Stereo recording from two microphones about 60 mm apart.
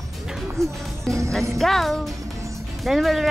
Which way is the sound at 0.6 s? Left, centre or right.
Right.